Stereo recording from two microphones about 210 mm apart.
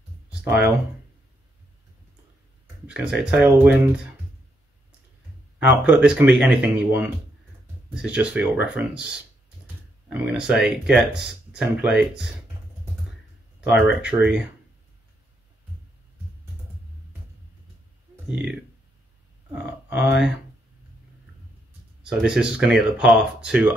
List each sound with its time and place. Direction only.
0.3 s speech: 5° right (ahead or behind)
2.9 s speech: 5° right (ahead or behind)
5.7 s speech: 5° right (ahead or behind)
10.1 s speech: 5° right (ahead or behind)
13.8 s speech: 5° right (ahead or behind)
18.3 s speech: 5° right (ahead or behind)
19.9 s speech: 10° right (ahead or behind)
22.0 s speech: 5° right (ahead or behind)